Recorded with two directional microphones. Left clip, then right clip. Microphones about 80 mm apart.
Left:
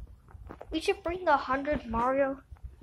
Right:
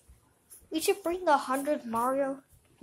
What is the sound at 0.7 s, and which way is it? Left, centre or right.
Speech, right.